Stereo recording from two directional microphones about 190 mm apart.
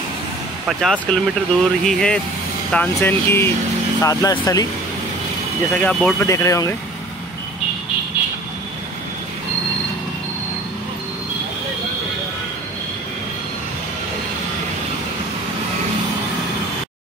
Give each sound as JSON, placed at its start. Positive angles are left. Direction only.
{"t": 0.7, "sound": "speech", "side_deg": 0}
{"t": 5.8, "sound": "speech", "side_deg": 10}